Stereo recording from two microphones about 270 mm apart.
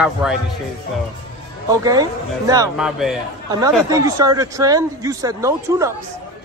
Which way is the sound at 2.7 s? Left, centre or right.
Centre.